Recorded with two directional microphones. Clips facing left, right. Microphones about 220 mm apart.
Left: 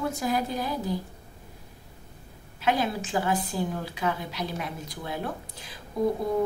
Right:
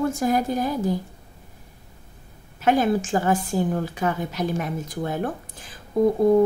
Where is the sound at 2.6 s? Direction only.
50° right (ahead or behind).